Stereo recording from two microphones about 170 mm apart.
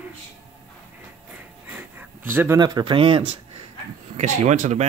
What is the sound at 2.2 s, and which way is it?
Speech, 10° right (ahead or behind).